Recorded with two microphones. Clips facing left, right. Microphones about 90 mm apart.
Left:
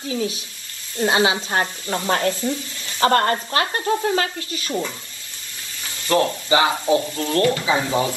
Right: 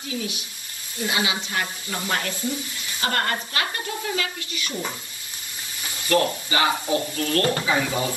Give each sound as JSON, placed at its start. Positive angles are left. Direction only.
{"t": 0.1, "sound": "speech", "side_deg": 35}
{"t": 6.0, "sound": "speech", "side_deg": 25}